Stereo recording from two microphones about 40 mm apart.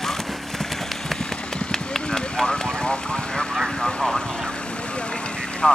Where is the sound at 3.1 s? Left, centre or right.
Centre.